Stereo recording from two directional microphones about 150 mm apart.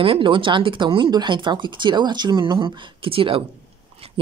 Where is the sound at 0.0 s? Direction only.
35° right (ahead or behind).